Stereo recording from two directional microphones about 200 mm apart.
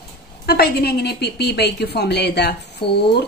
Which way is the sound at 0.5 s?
50° left (ahead or behind).